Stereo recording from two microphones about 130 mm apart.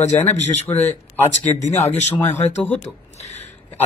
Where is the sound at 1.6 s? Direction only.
60° left (ahead or behind).